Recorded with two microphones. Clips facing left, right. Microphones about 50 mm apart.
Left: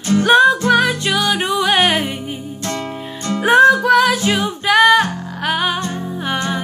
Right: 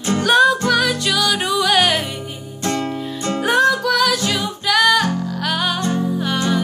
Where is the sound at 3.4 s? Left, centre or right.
Left.